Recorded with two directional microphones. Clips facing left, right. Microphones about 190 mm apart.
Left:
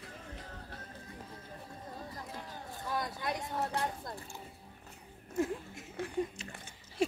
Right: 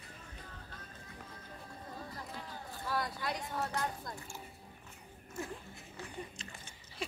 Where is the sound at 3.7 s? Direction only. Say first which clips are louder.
Left 2 dB; 30° left (ahead or behind).